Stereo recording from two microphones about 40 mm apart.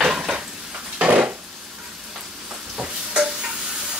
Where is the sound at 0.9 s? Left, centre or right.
Right.